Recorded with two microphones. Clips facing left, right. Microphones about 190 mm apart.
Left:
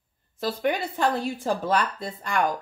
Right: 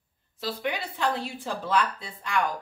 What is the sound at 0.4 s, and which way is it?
Speech, 50° left (ahead or behind).